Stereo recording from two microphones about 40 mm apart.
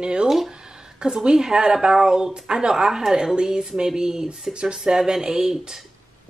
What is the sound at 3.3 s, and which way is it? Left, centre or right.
Speech, centre.